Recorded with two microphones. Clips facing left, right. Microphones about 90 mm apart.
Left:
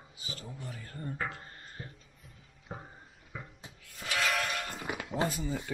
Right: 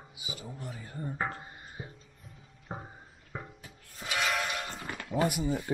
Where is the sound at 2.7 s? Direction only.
15° right (ahead or behind).